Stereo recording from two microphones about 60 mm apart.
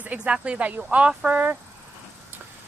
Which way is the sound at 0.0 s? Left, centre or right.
Right.